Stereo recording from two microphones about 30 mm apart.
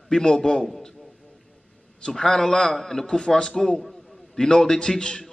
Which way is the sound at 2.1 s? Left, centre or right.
Centre.